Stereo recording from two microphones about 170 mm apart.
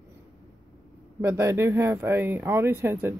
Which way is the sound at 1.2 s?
15° right (ahead or behind).